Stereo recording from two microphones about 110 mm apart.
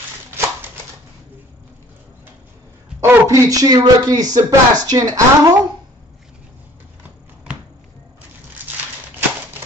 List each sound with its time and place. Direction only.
3.0 s speech: 30° right (ahead or behind)